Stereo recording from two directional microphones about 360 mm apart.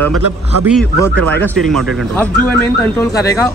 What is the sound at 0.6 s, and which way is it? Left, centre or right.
Speech, centre.